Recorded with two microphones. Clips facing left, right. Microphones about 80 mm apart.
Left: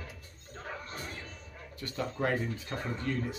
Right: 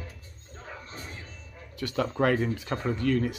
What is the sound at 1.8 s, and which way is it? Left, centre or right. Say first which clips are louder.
Speech: right 7 dB; right.